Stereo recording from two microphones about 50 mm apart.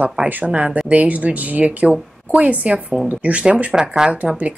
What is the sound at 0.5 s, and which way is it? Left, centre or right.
Speech, right.